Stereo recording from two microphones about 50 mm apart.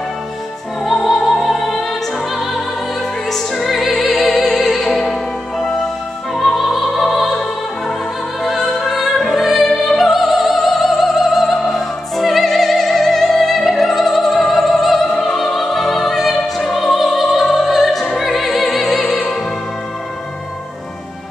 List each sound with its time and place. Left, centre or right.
1.0 s music: centre
8.5 s music: centre
9.1 s opera: centre
19.0 s music: left